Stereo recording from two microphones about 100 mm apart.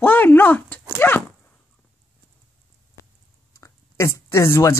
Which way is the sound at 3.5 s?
30° left (ahead or behind).